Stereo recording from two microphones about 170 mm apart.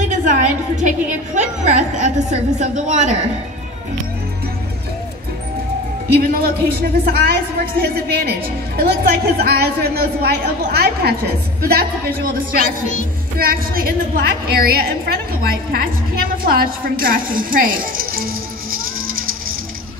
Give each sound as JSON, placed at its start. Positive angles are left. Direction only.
{"t": 0.1, "sound": "a woman's voice", "side_deg": -50}
{"t": 6.0, "sound": "a woman's voice", "side_deg": -65}
{"t": 13.4, "sound": "a woman's voice", "side_deg": -60}